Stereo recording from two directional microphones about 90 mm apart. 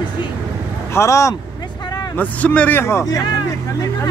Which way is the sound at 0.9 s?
35° left (ahead or behind).